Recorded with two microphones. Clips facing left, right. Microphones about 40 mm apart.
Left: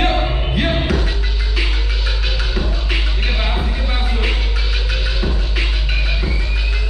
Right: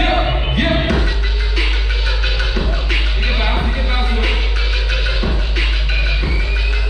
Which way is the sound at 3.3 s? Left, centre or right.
Centre.